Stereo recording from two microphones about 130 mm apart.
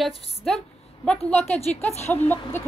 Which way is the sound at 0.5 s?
5° left (ahead or behind).